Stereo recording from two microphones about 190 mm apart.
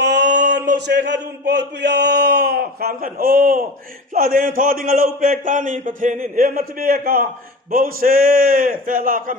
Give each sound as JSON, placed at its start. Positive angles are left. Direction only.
{"t": 0.0, "sound": "a man's voice", "side_deg": -65}